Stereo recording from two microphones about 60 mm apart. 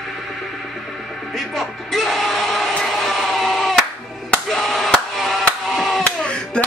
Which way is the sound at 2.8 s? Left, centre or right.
Centre.